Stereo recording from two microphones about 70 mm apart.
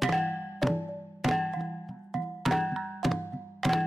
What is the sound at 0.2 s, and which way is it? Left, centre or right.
Music, left.